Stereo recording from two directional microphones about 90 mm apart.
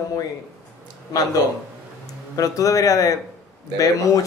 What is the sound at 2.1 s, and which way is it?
Speech, 40° left (ahead or behind).